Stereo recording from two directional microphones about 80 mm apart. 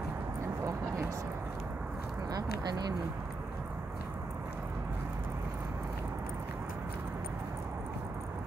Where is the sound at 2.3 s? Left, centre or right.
Right.